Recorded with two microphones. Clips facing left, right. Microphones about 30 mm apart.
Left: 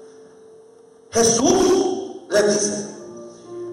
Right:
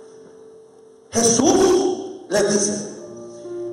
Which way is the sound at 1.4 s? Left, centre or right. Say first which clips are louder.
Right 1 dB; centre.